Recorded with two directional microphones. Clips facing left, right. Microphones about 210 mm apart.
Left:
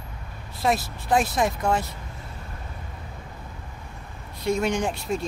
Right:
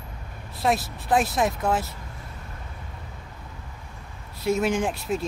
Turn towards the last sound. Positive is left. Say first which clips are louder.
# even
turn(degrees=-5)  # may be behind; listen again after turning